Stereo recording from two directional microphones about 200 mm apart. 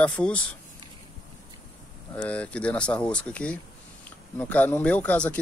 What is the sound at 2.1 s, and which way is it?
Speech, 5° left (ahead or behind).